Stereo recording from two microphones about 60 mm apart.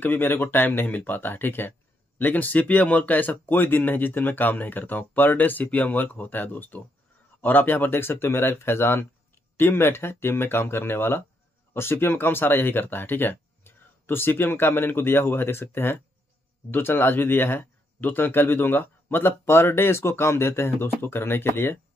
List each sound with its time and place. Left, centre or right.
0.0 s speech: left
19.4 s speech: left